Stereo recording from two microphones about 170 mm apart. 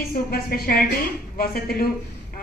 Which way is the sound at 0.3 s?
60° left (ahead or behind).